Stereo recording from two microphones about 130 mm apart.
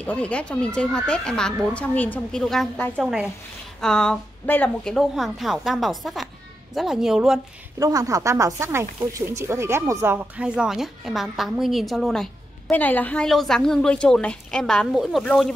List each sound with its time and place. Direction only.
0.0 s a woman's voice: 10° left (ahead or behind)
7.8 s a woman's voice: 25° right (ahead or behind); by 15.5 s centre (ahead or behind)